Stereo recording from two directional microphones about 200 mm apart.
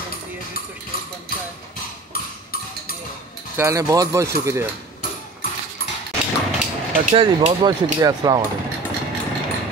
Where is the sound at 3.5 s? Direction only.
15° right (ahead or behind).